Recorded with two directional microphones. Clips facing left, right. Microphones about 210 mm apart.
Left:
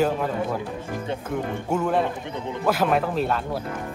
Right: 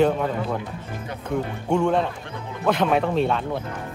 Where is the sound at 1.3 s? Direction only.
5° left (ahead or behind).